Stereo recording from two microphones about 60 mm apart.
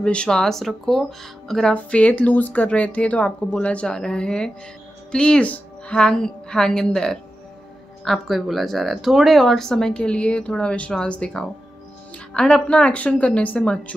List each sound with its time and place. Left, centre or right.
0.0 s speech: centre
1.7 s speech: left
8.0 s speech: centre; by 13.9 s left